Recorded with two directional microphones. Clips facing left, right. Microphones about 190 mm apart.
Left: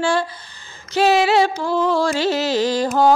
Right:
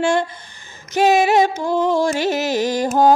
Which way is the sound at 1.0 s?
15° right (ahead or behind).